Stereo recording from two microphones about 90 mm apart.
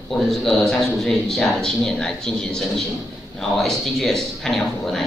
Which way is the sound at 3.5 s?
5° left (ahead or behind).